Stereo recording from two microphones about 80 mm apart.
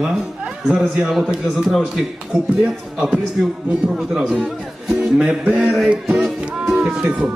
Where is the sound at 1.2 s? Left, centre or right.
Centre.